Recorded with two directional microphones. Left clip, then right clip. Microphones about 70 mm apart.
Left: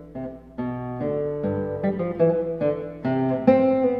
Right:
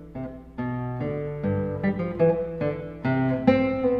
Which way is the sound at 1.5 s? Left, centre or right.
Centre.